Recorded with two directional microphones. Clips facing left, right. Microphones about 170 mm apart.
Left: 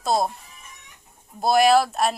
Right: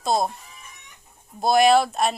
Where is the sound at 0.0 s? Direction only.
5° left (ahead or behind).